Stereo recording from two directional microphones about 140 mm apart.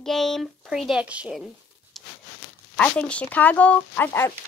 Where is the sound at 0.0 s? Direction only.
5° left (ahead or behind).